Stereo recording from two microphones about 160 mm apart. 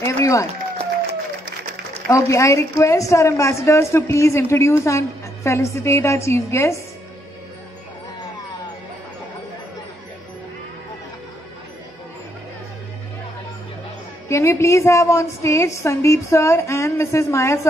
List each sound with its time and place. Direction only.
0.0 s speech: 20° left (ahead or behind)
2.0 s a woman's voice: 20° left (ahead or behind)
14.3 s a woman's voice: 15° left (ahead or behind)